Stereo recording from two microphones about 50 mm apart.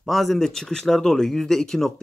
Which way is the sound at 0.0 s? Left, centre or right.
Centre.